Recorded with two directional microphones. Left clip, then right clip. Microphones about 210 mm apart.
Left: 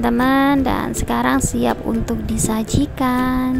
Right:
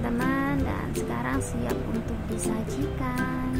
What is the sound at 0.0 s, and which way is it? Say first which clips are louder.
Speech: left 12 dB; 45° left (ahead or behind).